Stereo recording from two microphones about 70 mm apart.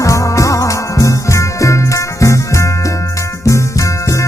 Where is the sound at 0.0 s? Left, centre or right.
Left.